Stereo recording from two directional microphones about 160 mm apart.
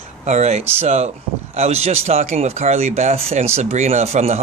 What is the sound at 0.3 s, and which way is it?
Speech, 45° right (ahead or behind).